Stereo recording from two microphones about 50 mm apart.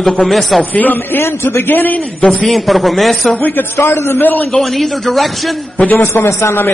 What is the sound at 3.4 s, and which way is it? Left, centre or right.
Speech, left.